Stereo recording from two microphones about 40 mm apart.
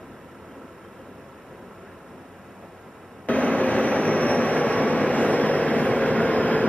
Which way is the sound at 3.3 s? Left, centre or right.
Left.